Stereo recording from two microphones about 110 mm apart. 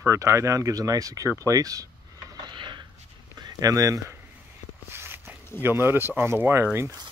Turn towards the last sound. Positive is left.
turn(degrees=-20)  # may be behind; listen again after turning